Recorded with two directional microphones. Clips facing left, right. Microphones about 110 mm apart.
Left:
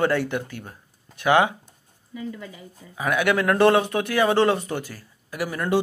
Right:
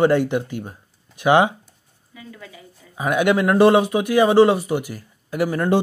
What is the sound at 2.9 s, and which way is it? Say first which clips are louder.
A man's voice: right 4 dB; 25° right (ahead or behind).